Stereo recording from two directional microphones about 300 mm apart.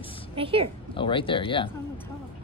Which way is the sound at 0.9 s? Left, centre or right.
Centre.